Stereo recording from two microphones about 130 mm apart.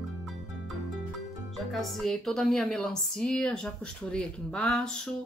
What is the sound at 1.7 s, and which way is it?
A woman's voice, centre (ahead or behind).